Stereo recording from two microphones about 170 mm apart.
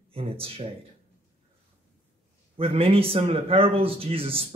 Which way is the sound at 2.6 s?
35° right (ahead or behind).